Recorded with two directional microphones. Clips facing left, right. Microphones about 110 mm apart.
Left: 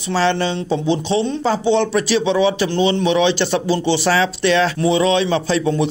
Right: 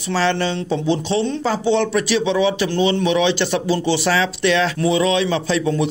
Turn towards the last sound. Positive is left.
turn(degrees=30)  # may be behind; listen again after turning